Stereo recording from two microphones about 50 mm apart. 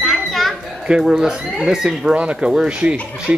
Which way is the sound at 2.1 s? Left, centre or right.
Right.